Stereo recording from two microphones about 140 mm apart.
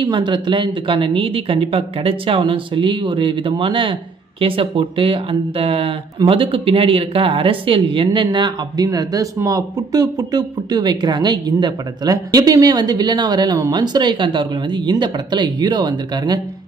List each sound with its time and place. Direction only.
0.0 s speech: 30° right (ahead or behind)